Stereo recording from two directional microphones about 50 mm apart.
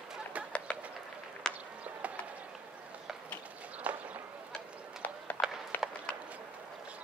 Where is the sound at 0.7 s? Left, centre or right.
Centre.